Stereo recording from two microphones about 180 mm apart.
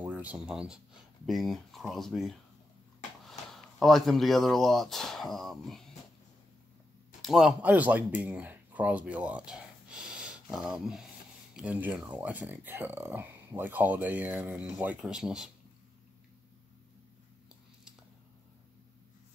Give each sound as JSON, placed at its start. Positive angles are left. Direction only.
{"t": 0.1, "sound": "speech", "side_deg": -10}
{"t": 7.2, "sound": "speech", "side_deg": 0}